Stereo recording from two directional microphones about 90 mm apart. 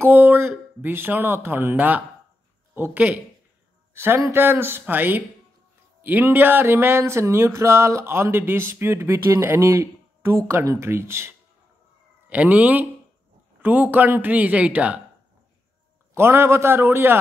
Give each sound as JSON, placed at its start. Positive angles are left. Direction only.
{"t": 0.0, "sound": "speech", "side_deg": -20}
{"t": 12.3, "sound": "speech", "side_deg": -15}
{"t": 16.2, "sound": "speech", "side_deg": -30}